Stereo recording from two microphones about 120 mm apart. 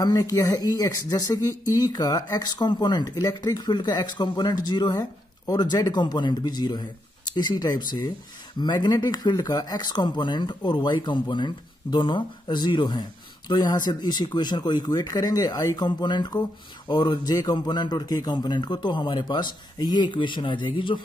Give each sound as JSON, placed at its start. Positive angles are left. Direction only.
{"t": 0.0, "sound": "speech", "side_deg": 30}